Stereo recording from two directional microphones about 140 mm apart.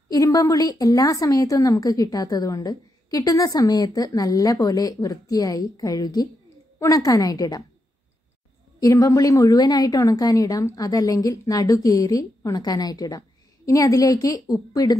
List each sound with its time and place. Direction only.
0.1 s a woman's voice: 25° left (ahead or behind)
8.8 s a woman's voice: 25° left (ahead or behind)